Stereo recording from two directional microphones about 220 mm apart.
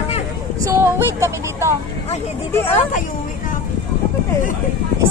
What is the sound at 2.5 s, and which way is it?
Speech, 10° left (ahead or behind).